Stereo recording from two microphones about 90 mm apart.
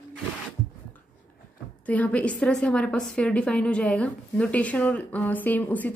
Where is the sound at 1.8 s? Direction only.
15° left (ahead or behind).